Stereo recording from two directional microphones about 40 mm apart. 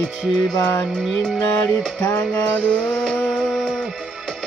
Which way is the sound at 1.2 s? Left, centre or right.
Centre.